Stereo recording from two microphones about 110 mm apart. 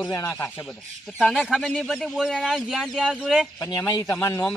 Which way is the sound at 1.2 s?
Centre (ahead or behind).